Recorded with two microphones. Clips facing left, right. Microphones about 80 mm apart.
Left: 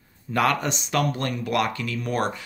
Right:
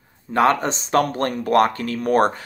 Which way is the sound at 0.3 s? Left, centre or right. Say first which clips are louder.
Right 5 dB; right.